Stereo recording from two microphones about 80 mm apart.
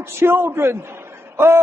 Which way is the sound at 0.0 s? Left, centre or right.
Right.